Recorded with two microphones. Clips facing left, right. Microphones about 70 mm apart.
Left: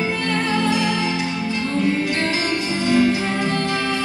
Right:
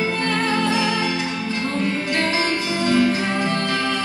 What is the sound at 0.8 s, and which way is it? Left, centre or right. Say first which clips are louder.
Music: even; left.